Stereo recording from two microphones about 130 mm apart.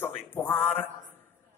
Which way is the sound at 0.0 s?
15° left (ahead or behind).